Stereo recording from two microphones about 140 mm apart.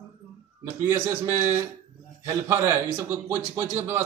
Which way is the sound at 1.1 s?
20° right (ahead or behind).